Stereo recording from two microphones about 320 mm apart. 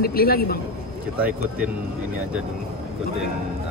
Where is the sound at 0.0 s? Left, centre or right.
Left.